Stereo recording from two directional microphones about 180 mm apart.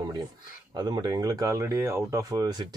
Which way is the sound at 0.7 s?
25° right (ahead or behind).